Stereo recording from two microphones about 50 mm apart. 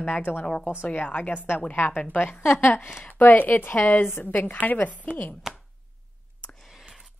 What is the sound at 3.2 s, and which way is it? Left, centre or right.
Speech, left.